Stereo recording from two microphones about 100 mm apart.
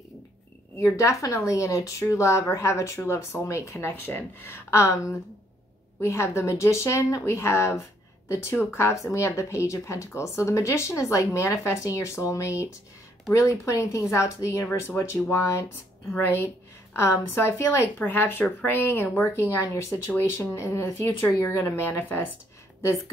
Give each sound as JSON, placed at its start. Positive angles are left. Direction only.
{"t": 0.7, "sound": "speech", "side_deg": 30}
{"t": 16.2, "sound": "speech", "side_deg": 25}